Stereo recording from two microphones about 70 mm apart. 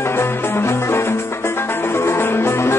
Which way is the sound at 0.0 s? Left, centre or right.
Left.